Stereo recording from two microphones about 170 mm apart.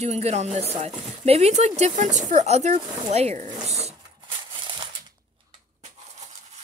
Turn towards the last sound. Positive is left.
turn(degrees=-25)  # may be behind; listen again after turning